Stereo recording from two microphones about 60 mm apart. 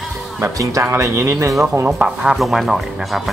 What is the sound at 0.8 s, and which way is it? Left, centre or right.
Speech, right.